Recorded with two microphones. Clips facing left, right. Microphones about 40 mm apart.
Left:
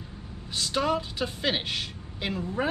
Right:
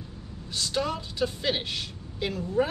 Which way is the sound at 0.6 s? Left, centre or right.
Centre.